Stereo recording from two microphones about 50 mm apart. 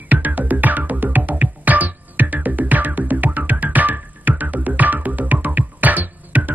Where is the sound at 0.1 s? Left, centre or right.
Right.